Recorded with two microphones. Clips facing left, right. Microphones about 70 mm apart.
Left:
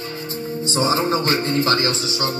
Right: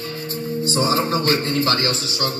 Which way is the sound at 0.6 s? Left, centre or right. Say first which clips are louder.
Even; left.